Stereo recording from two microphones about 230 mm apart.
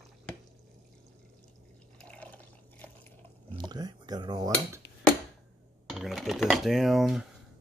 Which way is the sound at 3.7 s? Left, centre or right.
Centre.